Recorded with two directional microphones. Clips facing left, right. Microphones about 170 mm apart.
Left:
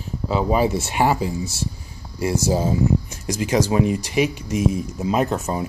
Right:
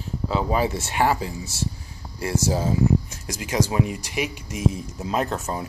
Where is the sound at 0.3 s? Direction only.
15° left (ahead or behind).